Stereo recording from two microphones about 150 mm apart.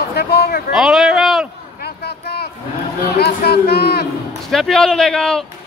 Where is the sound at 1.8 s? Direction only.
90° left.